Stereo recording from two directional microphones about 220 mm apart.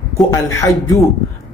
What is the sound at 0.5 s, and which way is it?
Speech, 15° left (ahead or behind).